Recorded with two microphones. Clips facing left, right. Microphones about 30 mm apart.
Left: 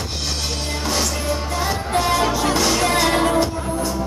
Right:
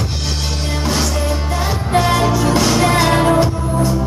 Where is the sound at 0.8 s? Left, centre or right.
Centre.